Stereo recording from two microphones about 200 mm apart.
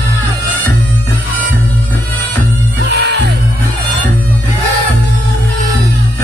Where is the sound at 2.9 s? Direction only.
60° right (ahead or behind).